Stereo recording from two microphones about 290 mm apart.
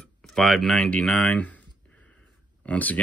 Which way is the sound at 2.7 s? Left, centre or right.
Centre.